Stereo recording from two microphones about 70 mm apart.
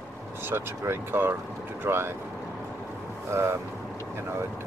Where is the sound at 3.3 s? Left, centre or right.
Right.